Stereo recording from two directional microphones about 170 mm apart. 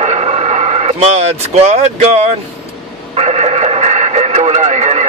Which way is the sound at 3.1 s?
35° right (ahead or behind).